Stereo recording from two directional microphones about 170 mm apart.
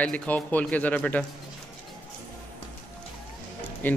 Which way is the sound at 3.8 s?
10° left (ahead or behind).